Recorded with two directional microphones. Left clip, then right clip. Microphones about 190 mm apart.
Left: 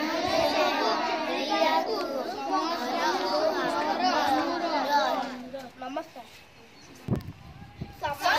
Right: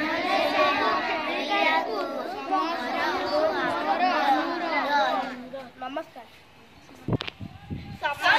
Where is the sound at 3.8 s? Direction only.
Centre (ahead or behind).